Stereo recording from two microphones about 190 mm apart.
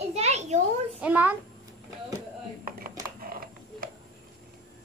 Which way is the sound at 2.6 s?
50° right (ahead or behind).